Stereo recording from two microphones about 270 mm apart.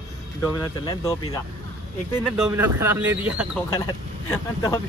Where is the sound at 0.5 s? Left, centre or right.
Centre.